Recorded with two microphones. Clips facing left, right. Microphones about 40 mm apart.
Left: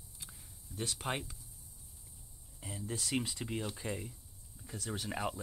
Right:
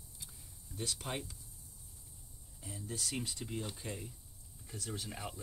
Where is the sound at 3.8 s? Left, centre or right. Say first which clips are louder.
Left 4 dB; centre.